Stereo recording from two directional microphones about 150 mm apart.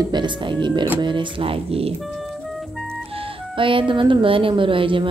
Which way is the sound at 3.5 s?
35° right (ahead or behind).